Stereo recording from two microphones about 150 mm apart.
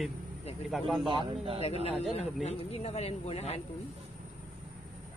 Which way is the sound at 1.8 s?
45° left (ahead or behind).